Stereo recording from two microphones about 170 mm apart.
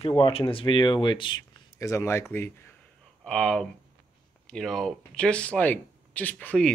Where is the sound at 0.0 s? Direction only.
30° left (ahead or behind).